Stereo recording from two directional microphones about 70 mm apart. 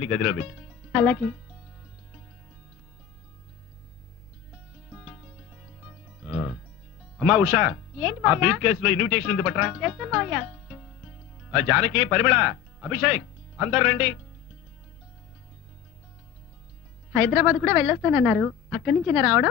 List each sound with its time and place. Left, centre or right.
0.0 s speech: centre
4.5 s music: centre
7.2 s speech: centre
17.1 s a woman's voice: centre